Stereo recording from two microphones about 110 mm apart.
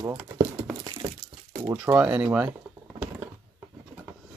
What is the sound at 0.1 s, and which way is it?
Speech, 25° right (ahead or behind).